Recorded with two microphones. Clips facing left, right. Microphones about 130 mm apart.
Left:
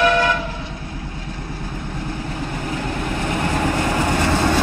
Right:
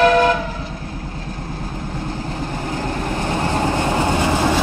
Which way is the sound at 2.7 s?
30° right (ahead or behind).